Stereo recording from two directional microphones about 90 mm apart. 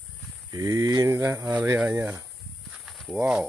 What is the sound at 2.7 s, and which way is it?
Walk, centre (ahead or behind).